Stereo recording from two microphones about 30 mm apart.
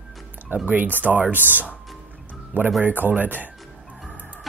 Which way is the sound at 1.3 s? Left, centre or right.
Right.